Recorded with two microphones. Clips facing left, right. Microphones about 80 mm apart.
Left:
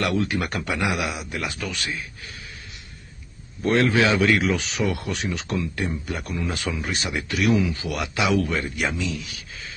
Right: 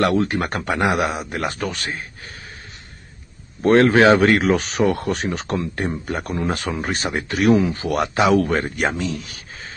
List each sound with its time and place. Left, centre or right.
0.0 s speech: right
3.6 s speech: right